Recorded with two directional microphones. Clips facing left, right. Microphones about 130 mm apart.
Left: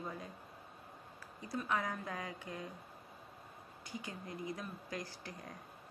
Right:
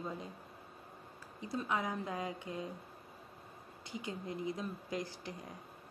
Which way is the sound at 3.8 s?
20° right (ahead or behind).